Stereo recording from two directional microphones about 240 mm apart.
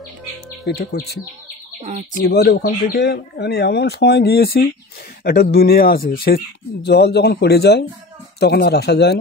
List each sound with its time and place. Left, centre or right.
0.7 s speech: left
1.8 s speech: right
2.1 s speech: left